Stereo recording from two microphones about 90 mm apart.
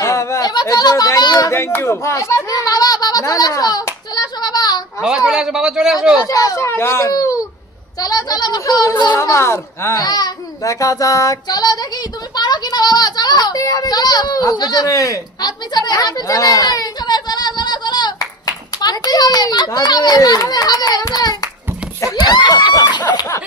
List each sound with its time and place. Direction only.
0.0 s a sound: 35° left (ahead or behind)
1.5 s child singing: 25° left (ahead or behind)
2.5 s hands: 45° left (ahead or behind)
5.0 s a man's voice: 5° right (ahead or behind)
6.2 s a child's voice: 40° left (ahead or behind)
6.6 s a child's voice: 30° left (ahead or behind)
7.1 s a child's voice: 40° left (ahead or behind)
9.2 s child singing: 35° left (ahead or behind)
10.0 s child singing: 50° left (ahead or behind)
12.4 s a child's voice: 50° left (ahead or behind)
14.4 s child singing: 45° left (ahead or behind)
15.4 s a child's voice: 50° left (ahead or behind)